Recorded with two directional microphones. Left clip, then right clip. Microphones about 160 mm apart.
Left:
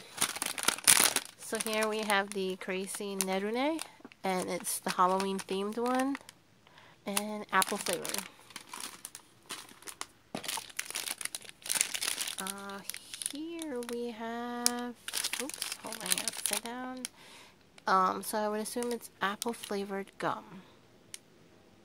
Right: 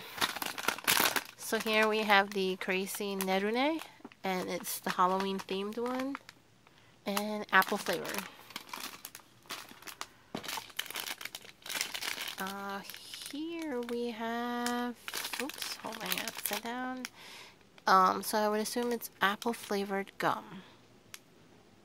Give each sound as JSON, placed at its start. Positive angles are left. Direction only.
{"t": 0.4, "sound": "a sound", "side_deg": 15}
{"t": 1.7, "sound": "speech", "side_deg": -5}
{"t": 7.1, "sound": "speech", "side_deg": 0}
{"t": 8.5, "sound": "a sound", "side_deg": -35}
{"t": 10.3, "sound": "crushing", "side_deg": -5}
{"t": 11.7, "sound": "crumpling", "side_deg": -5}
{"t": 13.4, "sound": "a sound", "side_deg": -5}
{"t": 14.7, "sound": "crumpling", "side_deg": -10}
{"t": 16.6, "sound": "speech", "side_deg": -5}